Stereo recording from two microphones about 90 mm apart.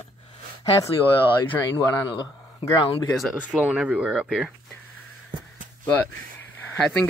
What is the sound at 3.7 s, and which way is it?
Speech, 10° right (ahead or behind).